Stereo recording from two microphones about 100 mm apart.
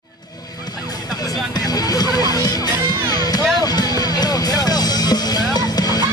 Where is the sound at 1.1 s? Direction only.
40° left (ahead or behind).